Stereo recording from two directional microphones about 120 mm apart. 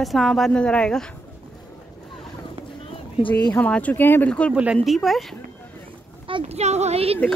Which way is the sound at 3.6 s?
10° left (ahead or behind).